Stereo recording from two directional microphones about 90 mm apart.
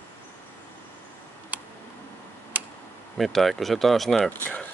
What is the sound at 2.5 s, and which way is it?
Tick-tock, 15° right (ahead or behind).